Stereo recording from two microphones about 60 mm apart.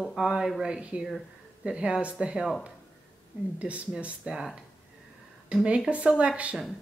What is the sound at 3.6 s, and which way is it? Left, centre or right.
Speech, right.